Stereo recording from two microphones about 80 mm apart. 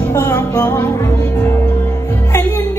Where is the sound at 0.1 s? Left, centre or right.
Left.